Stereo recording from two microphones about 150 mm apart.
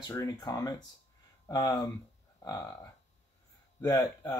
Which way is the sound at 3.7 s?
25° left (ahead or behind).